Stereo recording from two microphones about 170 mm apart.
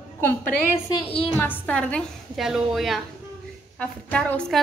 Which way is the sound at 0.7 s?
35° left (ahead or behind).